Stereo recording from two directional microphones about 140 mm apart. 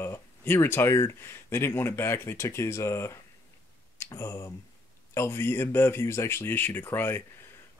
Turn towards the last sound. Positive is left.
turn(degrees=15)  # may be behind; listen again after turning